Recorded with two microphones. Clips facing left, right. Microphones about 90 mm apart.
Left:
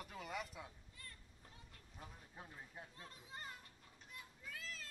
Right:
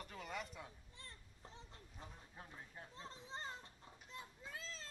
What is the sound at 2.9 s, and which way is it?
Children playing, 25° right (ahead or behind).